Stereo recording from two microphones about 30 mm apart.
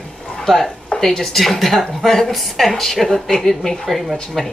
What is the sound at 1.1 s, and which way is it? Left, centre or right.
Speech, centre.